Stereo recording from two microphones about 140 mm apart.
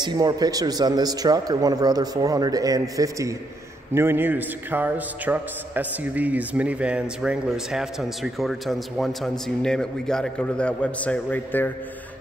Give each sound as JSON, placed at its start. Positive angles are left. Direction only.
{"t": 0.0, "sound": "a man's voice", "side_deg": -30}